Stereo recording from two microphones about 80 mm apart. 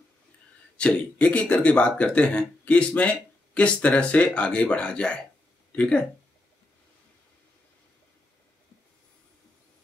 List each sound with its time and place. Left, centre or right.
0.7 s speech: centre